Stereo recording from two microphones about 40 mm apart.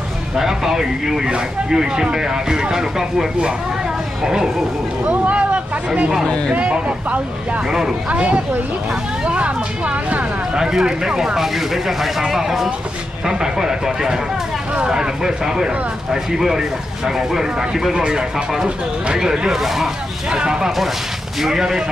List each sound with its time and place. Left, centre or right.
0.4 s speech: centre
5.0 s speech: right
6.2 s speech: centre
6.5 s speech: right
10.5 s speech: centre
19.1 s speech: centre
20.2 s speech: centre